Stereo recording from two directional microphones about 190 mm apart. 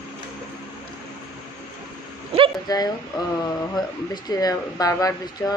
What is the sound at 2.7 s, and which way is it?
Speech, 20° left (ahead or behind).